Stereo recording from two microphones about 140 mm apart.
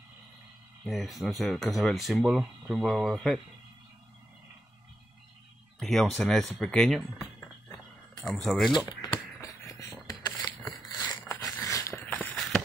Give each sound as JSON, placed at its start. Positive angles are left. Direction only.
{"t": 0.8, "sound": "speech", "side_deg": 0}
{"t": 5.8, "sound": "speech", "side_deg": 0}
{"t": 8.2, "sound": "speech", "side_deg": 5}
{"t": 8.7, "sound": "speech", "side_deg": 25}
{"t": 9.1, "sound": "a sound", "side_deg": 25}
{"t": 12.4, "sound": "a sound", "side_deg": 0}